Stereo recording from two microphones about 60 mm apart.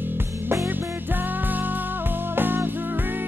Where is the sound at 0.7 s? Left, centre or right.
Right.